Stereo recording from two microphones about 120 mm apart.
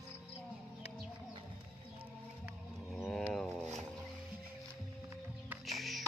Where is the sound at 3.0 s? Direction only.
10° left (ahead or behind).